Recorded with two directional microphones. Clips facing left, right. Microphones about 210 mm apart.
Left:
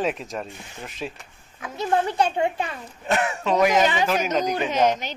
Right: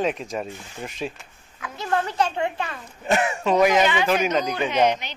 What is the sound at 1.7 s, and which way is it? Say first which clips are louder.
A child's voice: left 2 dB; 20° left (ahead or behind).